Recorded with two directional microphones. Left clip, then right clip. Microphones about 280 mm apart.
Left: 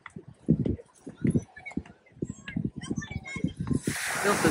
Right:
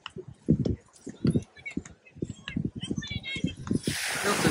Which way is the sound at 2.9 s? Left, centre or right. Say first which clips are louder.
Left 1 dB; centre.